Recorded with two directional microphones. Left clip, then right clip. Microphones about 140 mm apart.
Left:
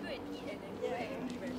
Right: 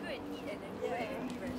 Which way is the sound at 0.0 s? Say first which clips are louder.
Right 1 dB; 25° right (ahead or behind).